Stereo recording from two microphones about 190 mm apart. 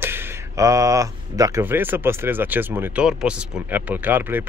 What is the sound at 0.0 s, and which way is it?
Speech, 10° right (ahead or behind).